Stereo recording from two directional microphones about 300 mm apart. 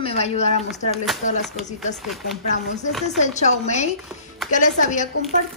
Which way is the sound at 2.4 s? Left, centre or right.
Left.